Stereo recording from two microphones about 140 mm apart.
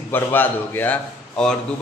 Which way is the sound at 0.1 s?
15° left (ahead or behind).